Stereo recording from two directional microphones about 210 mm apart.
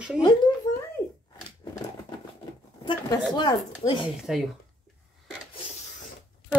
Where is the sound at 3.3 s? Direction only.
20° left (ahead or behind).